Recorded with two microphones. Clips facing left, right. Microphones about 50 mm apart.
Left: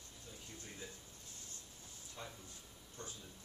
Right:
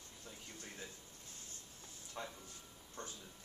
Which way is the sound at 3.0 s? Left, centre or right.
Right.